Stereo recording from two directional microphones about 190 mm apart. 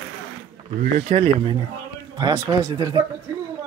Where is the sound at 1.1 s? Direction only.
30° right (ahead or behind).